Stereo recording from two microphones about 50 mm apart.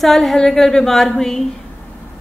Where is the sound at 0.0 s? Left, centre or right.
Centre.